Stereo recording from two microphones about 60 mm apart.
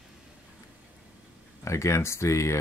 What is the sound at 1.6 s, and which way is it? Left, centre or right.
Speech, left.